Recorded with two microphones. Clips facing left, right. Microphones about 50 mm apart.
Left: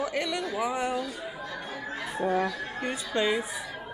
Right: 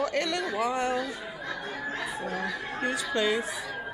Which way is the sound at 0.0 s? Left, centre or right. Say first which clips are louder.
Right 2 dB; centre.